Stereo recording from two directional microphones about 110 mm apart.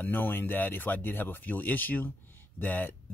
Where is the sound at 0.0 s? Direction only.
15° left (ahead or behind).